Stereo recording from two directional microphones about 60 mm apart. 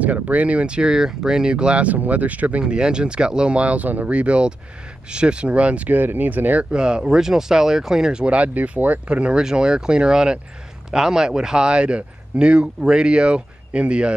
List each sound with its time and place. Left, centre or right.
0.0 s speech: right
2.6 s speech: centre
6.7 s speech: centre